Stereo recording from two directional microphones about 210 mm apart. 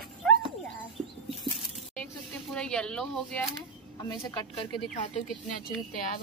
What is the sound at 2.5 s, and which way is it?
Speech, 5° left (ahead or behind).